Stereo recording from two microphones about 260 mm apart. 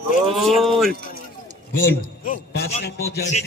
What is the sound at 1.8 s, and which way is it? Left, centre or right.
A man's voice, left.